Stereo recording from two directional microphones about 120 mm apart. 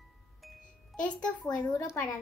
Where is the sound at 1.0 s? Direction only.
35° left (ahead or behind).